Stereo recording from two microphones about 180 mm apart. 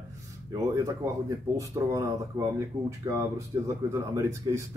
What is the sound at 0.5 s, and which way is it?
Speech, 20° right (ahead or behind).